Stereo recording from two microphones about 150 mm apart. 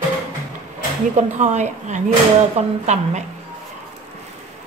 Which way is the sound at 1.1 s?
50° right (ahead or behind).